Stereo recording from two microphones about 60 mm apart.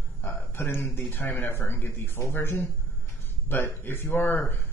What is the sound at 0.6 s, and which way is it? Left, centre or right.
Speech, left.